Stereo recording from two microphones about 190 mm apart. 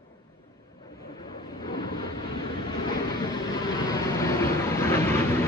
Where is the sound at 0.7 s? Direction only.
20° left (ahead or behind).